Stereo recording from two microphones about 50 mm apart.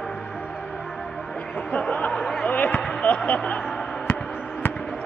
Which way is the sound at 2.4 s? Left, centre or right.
Left.